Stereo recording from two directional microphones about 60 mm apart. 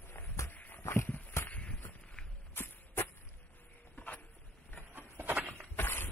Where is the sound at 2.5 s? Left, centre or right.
Left.